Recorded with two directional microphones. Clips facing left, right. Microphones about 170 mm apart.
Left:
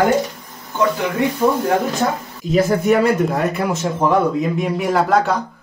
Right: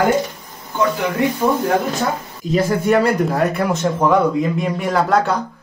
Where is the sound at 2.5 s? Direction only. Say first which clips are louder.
Left 1 dB; 5° left (ahead or behind).